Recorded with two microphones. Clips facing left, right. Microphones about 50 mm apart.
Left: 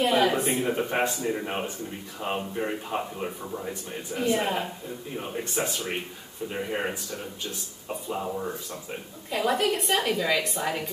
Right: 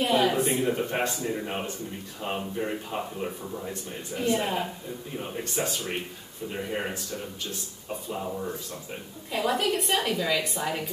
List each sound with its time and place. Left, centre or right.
0.0 s a man's voice: centre
9.3 s a woman's voice: centre